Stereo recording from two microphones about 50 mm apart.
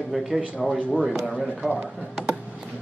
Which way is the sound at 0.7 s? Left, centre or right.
Centre.